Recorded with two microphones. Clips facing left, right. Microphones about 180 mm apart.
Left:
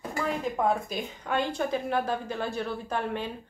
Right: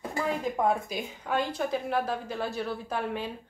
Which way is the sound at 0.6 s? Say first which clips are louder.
Left 1 dB; 10° right (ahead or behind).